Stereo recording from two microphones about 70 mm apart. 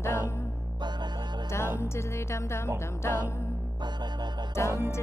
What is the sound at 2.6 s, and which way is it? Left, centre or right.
Music, left.